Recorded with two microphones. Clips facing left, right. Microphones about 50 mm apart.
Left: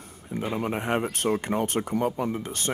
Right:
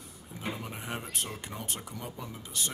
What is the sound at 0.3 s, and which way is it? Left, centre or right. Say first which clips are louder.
Speech: left 10 dB; left.